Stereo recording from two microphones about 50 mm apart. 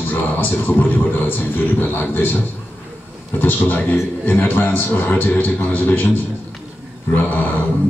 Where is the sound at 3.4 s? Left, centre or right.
Left.